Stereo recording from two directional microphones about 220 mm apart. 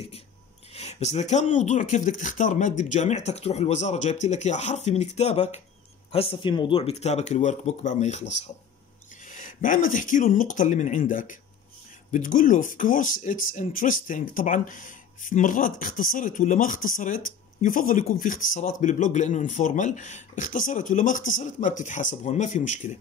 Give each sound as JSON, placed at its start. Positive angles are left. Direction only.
{"t": 0.7, "sound": "speech", "side_deg": 30}
{"t": 9.2, "sound": "a sound", "side_deg": 35}
{"t": 9.9, "sound": "speech", "side_deg": 35}